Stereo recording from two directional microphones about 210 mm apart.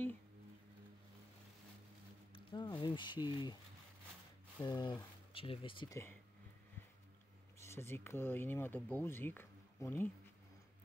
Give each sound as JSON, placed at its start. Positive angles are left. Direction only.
{"t": 2.3, "sound": "speech", "side_deg": 20}
{"t": 4.6, "sound": "speech", "side_deg": 20}
{"t": 7.6, "sound": "speech", "side_deg": 10}